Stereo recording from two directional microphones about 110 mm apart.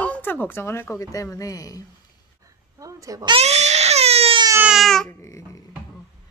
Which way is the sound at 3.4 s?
85° right.